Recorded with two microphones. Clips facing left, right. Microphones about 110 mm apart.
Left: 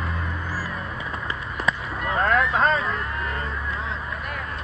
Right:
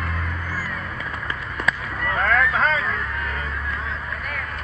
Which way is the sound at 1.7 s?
25° left (ahead or behind).